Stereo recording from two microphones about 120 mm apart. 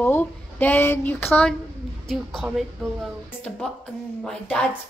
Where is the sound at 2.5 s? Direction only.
Centre (ahead or behind).